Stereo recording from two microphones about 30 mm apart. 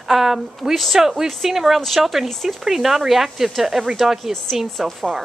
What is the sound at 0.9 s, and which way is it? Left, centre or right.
Speech, centre.